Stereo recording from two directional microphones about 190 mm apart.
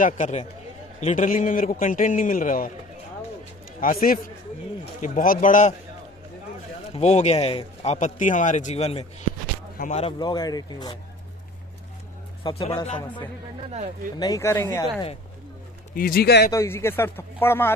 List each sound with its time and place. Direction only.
0.0 s a man's voice: 35° left (ahead or behind)
3.8 s a man's voice: 50° left (ahead or behind)
6.9 s speech: 35° left (ahead or behind)
12.4 s speech: 30° left (ahead or behind)
13.7 s speech: 35° right (ahead or behind)
14.2 s speech: 15° left (ahead or behind)
15.9 s a man's voice: 50° left (ahead or behind)
16.5 s speech: 10° left (ahead or behind)